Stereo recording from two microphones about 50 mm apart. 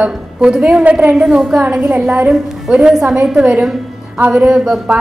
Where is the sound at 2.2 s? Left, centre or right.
Centre.